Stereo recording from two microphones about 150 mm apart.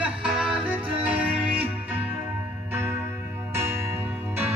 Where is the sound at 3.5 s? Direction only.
15° right (ahead or behind).